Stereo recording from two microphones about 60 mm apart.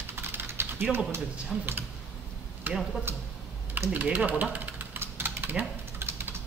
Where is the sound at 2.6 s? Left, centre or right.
Right.